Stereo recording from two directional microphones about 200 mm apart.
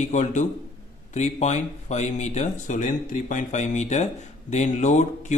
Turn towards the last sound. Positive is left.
turn(degrees=35)  # may be behind; listen again after turning